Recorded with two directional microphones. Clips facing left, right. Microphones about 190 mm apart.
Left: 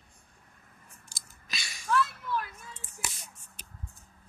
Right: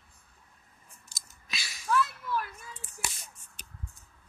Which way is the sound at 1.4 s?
Centre (ahead or behind).